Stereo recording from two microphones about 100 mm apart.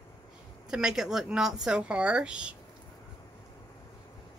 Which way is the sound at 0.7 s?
5° right (ahead or behind).